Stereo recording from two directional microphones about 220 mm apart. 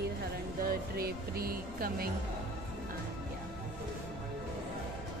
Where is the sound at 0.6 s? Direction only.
45° right (ahead or behind).